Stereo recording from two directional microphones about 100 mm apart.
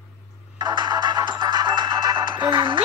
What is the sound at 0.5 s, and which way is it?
Music, 45° right (ahead or behind).